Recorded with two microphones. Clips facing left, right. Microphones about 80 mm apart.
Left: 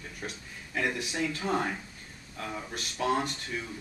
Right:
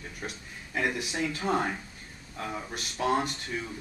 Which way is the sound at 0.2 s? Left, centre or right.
Centre.